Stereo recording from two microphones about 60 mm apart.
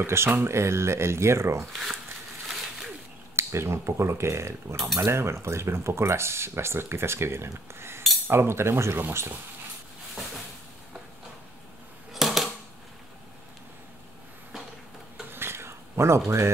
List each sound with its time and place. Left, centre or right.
0.0 s speech: right
1.6 s speech: centre
2.4 s a sound: centre
3.3 s speech: right
12.1 s typewriter: centre
15.3 s a sound: right